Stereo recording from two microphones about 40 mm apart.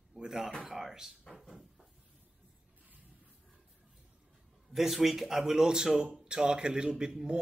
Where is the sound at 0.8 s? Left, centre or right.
Centre.